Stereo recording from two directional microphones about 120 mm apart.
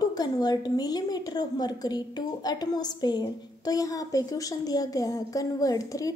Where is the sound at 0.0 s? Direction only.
35° left (ahead or behind).